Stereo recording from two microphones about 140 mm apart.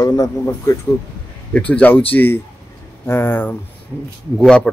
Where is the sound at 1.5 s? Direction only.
10° left (ahead or behind).